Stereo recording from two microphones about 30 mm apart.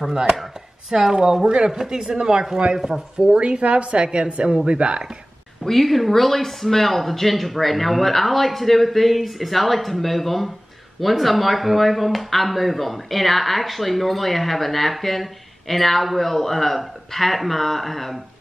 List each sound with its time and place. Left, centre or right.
0.1 s speech: right
1.4 s speech: right
1.7 s speech: centre
2.0 s speech: right
3.3 s a woman's voice: right
5.6 s speech: centre